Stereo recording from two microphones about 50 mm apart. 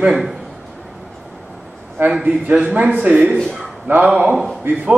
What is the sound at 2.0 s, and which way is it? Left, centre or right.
Speech, right.